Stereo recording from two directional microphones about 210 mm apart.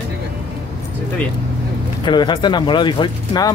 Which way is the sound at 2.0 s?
20° left (ahead or behind).